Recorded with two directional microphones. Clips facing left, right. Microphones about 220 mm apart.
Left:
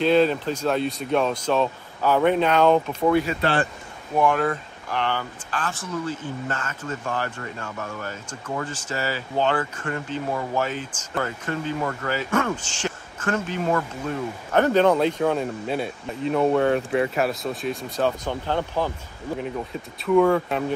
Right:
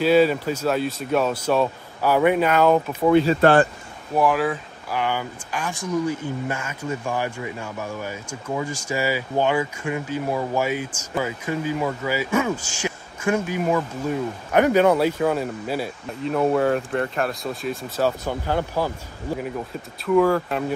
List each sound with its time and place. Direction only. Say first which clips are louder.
0.0 s speech: right 2 dB; 5° right (ahead or behind)
3.1 s speech: right 5 dB; 25° right (ahead or behind)
3.3 s a man's voice: right 7 dB; 50° right (ahead or behind)
4.1 s speech: right 1 dB; 5° right (ahead or behind)
20.1 s speech: even; centre (ahead or behind)